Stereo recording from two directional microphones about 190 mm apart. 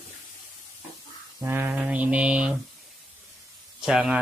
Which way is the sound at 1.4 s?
10° right (ahead or behind).